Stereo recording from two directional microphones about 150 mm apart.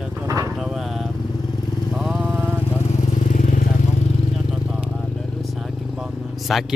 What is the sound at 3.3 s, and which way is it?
Vehicle, 55° left (ahead or behind).